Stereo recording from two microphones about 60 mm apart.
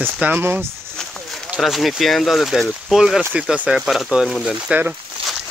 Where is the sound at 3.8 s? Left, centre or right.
Centre.